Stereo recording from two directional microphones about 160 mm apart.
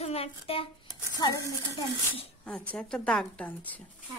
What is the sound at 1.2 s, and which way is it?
Speech, 25° left (ahead or behind).